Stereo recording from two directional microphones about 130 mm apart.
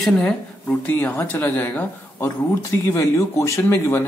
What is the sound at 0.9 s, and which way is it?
Speech, 15° left (ahead or behind).